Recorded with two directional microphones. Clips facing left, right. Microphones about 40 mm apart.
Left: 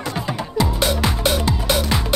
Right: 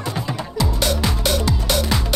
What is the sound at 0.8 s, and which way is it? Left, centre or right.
Music, centre.